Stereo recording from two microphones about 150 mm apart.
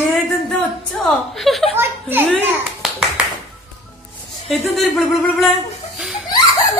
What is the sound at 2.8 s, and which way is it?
Finger snapping, centre (ahead or behind).